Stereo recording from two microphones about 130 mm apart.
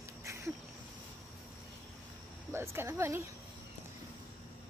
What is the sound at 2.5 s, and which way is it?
Speech, 20° right (ahead or behind).